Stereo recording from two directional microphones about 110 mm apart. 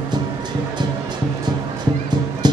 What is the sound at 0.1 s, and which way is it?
Music, 40° right (ahead or behind).